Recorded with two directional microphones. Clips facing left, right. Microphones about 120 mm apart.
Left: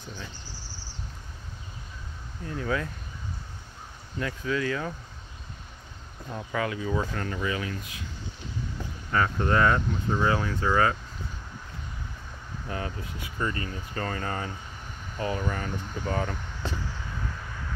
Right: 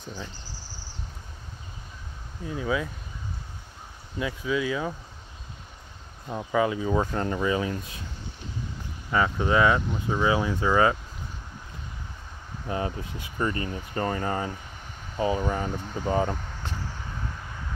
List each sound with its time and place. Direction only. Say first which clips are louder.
2.4 s speech: right 2 dB; 10° right (ahead or behind)
4.2 s speech: right 2 dB; 10° right (ahead or behind)
6.3 s speech: right 5 dB; 20° right (ahead or behind)
9.1 s speech: right 2 dB; 10° right (ahead or behind)
12.6 s speech: right 5 dB; 25° right (ahead or behind)